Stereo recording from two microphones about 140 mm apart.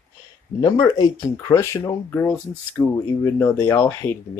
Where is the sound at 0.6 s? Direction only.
25° left (ahead or behind).